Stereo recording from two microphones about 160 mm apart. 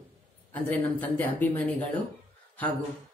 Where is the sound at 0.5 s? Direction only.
10° left (ahead or behind).